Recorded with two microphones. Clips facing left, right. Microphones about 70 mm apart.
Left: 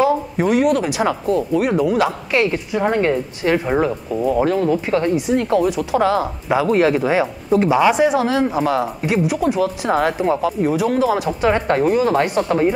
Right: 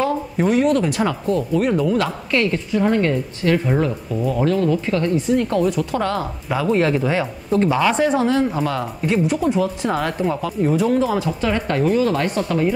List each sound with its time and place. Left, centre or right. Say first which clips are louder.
0.0 s a woman's voice: left 3 dB; centre
5.2 s speech: left 1 dB; centre
11.2 s a woman's voice: left 4 dB; left